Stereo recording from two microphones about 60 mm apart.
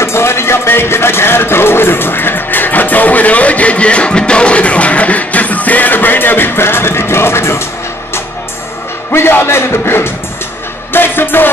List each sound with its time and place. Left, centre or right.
0.0 s speech: left
9.1 s a man's voice: left